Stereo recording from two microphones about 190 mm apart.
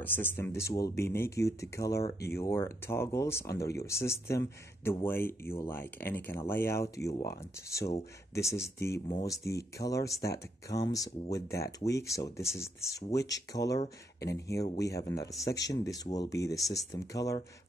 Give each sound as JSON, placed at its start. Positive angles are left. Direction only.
{"t": 0.0, "sound": "speech", "side_deg": 10}
{"t": 8.4, "sound": "speech", "side_deg": 15}